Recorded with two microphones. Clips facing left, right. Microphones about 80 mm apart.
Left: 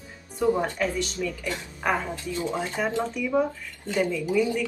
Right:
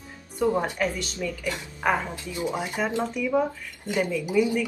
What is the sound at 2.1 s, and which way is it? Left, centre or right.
Speech, centre.